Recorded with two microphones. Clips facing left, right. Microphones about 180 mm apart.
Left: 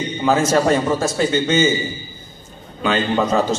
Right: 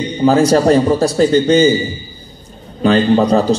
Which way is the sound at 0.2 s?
35° right (ahead or behind).